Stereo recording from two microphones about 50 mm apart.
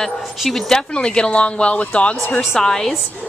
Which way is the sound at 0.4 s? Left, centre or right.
Centre.